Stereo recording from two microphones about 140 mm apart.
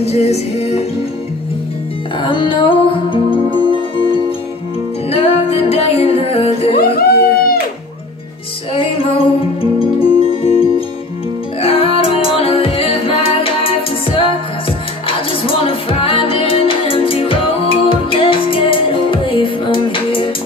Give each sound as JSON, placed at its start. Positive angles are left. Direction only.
{"t": 0.0, "sound": "music", "side_deg": 50}
{"t": 2.1, "sound": "music", "side_deg": 35}
{"t": 5.1, "sound": "music", "side_deg": 45}
{"t": 6.7, "sound": "a sound", "side_deg": 90}
{"t": 8.7, "sound": "music", "side_deg": 40}
{"t": 11.6, "sound": "music", "side_deg": 40}